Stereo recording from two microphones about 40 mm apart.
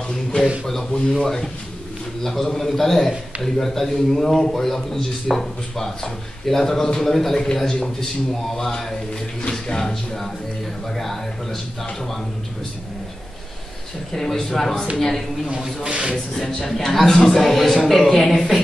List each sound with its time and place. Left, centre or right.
1.1 s a man's voice: centre
14.1 s a man's voice: centre
15.8 s speech: right
16.3 s a man's voice: centre